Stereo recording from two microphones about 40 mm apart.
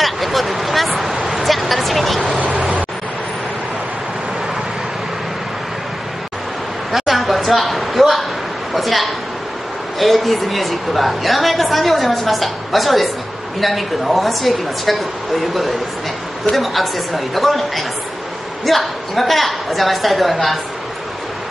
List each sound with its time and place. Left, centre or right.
0.0 s a sound: centre
1.3 s vehicle: centre
2.3 s vehicle: right
6.9 s a sound: centre
9.9 s a woman's voice: centre
16.5 s a woman's voice: centre